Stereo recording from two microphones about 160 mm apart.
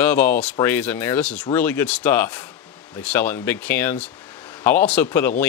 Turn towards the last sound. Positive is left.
turn(degrees=10)  # may be behind; listen again after turning